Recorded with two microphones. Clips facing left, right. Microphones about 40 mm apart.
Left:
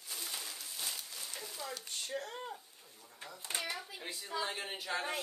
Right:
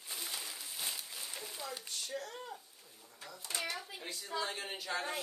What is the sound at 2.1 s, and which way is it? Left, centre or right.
Speech, left.